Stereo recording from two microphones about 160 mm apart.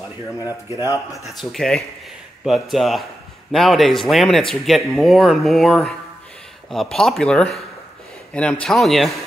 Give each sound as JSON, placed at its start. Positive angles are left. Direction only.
{"t": 0.4, "sound": "speech", "side_deg": 20}
{"t": 1.2, "sound": "speech", "side_deg": 0}